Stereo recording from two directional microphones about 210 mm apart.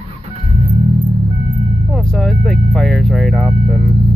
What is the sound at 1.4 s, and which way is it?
Vehicle, 30° left (ahead or behind).